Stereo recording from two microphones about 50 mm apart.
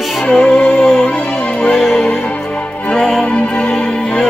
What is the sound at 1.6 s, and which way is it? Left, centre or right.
Music, centre.